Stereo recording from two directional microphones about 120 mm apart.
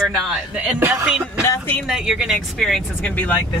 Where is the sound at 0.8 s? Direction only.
20° right (ahead or behind).